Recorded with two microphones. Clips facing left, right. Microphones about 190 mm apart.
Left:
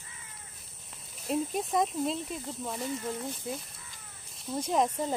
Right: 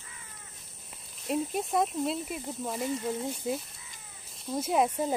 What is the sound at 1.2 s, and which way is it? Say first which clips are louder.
Speech: even; centre (ahead or behind).